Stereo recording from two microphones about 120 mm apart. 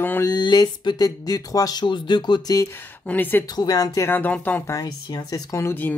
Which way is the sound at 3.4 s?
35° left (ahead or behind).